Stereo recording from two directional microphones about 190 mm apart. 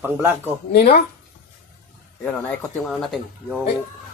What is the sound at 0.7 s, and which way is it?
Speech, 50° left (ahead or behind).